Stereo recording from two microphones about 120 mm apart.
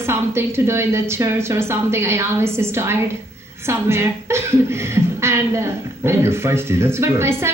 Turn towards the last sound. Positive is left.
turn(degrees=-20)  # may be behind; listen again after turning